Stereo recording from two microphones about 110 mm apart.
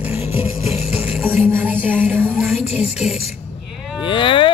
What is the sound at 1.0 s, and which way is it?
Music, 15° right (ahead or behind).